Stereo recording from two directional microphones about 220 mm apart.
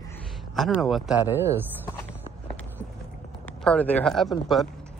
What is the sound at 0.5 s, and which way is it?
Speech, centre (ahead or behind).